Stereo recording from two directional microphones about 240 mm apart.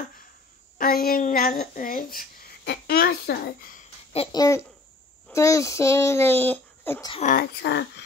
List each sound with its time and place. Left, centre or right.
0.7 s a woman's voice: left
4.1 s a child's voice: left
7.1 s a woman's voice: left